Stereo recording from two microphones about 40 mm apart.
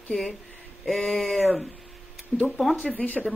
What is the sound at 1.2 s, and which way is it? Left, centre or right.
Speech, centre.